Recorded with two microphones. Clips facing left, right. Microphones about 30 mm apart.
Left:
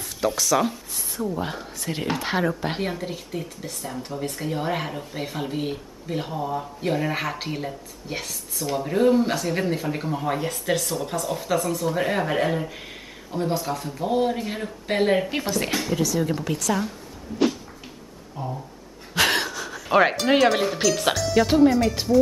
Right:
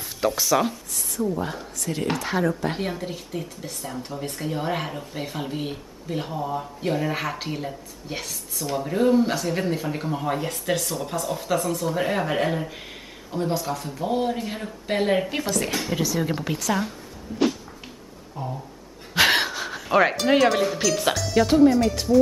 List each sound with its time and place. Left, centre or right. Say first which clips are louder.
0.4 s speech: even; centre
1.4 s speech: even; centre
2.8 s speech: left 1 dB; centre
15.9 s speech: left 2 dB; centre
18.4 s speech: even; centre
19.1 s a sound: right 2 dB; centre
19.9 s speech: even; centre
20.5 s speech: right 1 dB; centre
20.8 s speech: left 1 dB; centre